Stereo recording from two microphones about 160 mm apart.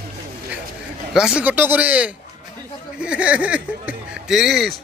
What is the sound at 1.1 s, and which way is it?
Speech, 5° right (ahead or behind).